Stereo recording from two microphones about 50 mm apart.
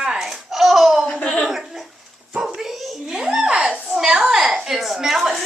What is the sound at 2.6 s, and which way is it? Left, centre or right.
Dog, centre.